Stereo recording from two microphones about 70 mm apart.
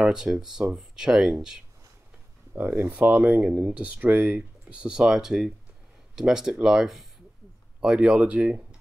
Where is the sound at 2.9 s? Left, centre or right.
Right.